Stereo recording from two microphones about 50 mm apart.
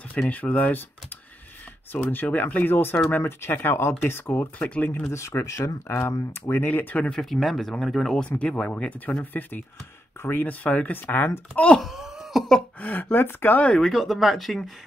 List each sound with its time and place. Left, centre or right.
0.3 s speech: left
1.9 s speech: left
4.6 s speech: left
5.1 s speech: left
5.9 s speech: left
7.1 s speech: centre
8.2 s speech: left
11.5 s speech: left
11.8 s a sound: centre
12.8 s speech: left
13.7 s speech: centre